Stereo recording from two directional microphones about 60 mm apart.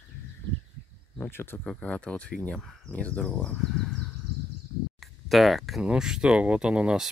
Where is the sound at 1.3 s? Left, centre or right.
Left.